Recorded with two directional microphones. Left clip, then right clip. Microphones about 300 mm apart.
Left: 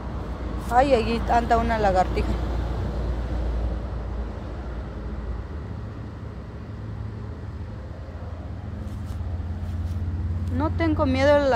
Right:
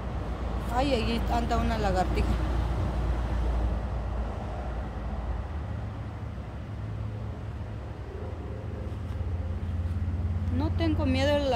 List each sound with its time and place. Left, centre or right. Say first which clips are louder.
0.7 s speech: left 9 dB; centre
10.6 s speech: left 7 dB; centre